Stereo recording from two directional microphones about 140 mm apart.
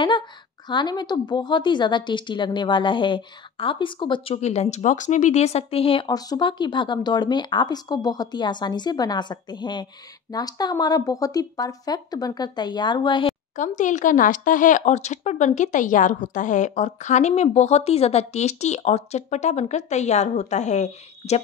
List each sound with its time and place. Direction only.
0.7 s a woman's voice: 30° left (ahead or behind)
13.6 s speech: 65° left (ahead or behind)